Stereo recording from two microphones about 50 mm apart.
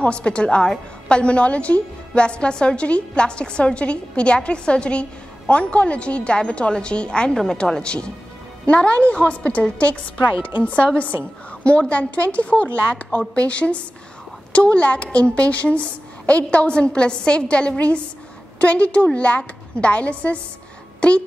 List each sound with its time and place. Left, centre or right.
0.0 s a woman's voice: left
11.9 s a woman's voice: left